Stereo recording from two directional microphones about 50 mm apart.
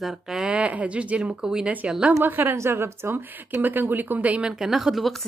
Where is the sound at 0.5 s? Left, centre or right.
Right.